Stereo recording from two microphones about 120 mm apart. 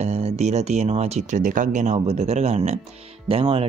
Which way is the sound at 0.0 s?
65° right (ahead or behind).